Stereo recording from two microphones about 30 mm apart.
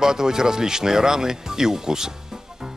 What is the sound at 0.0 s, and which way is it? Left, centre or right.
Speech, centre.